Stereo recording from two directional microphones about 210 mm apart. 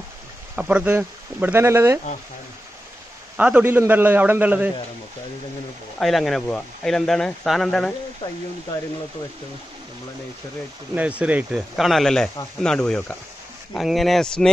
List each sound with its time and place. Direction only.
0.6 s speech: 5° right (ahead or behind)
3.3 s speech: 5° right (ahead or behind)
5.9 s speech: centre (ahead or behind)
8.2 s speech: 20° left (ahead or behind)
11.0 s speech: 5° right (ahead or behind)